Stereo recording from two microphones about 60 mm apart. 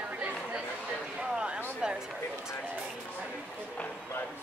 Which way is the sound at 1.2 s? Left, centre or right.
Centre.